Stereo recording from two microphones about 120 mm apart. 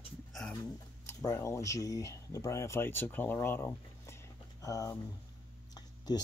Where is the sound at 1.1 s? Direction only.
25° left (ahead or behind).